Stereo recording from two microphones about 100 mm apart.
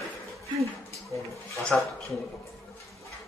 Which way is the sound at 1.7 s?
10° left (ahead or behind).